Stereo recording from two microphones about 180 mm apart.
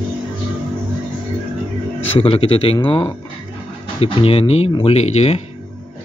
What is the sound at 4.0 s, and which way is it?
Speech, 30° left (ahead or behind).